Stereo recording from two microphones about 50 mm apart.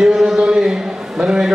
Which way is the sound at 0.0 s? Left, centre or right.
Centre.